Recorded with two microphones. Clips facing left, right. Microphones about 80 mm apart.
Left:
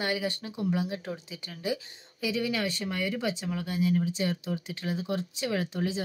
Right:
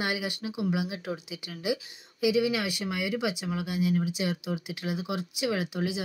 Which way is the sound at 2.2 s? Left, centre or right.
Centre.